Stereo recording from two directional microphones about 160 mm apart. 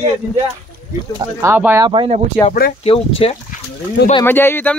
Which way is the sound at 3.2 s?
35° left (ahead or behind).